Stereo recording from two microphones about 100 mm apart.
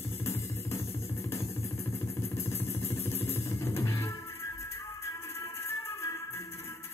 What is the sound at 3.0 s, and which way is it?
Vehicle, 90° left.